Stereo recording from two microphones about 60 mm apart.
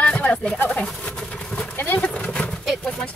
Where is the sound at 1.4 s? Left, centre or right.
Centre.